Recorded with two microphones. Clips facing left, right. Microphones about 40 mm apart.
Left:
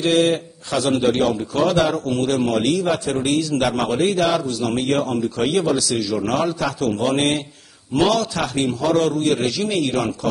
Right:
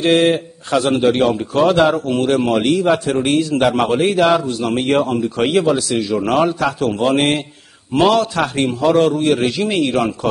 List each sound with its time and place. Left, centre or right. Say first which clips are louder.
0.0 s a man's voice: right 4 dB; right